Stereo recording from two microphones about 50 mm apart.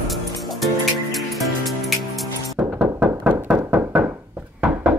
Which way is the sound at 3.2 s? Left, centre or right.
Right.